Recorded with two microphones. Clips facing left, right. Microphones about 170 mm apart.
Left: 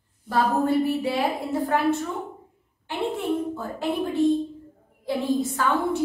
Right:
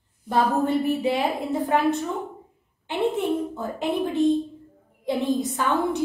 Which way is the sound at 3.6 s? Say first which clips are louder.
Right 1 dB; 20° right (ahead or behind).